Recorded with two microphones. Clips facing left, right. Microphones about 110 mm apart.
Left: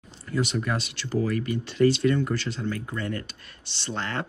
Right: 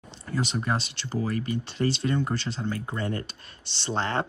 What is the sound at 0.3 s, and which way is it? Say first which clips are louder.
Speech: left 1 dB; 30° right (ahead or behind).